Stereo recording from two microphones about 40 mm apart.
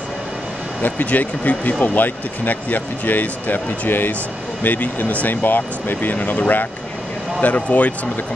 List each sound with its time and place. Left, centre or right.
0.8 s speech: left
4.6 s speech: left
5.3 s speech: left
6.1 s speech: left